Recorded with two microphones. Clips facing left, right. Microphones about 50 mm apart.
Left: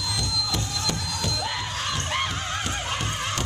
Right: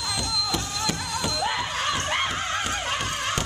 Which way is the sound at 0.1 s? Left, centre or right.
Centre.